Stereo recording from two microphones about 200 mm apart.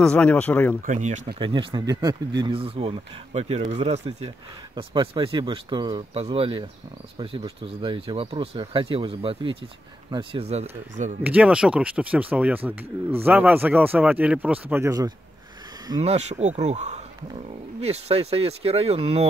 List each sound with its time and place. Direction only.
0.0 s speech: 5° left (ahead or behind)
0.8 s speech: 35° right (ahead or behind)
1.2 s speech: 25° right (ahead or behind)
11.2 s speech: 5° right (ahead or behind)
16.0 s speech: 35° right (ahead or behind)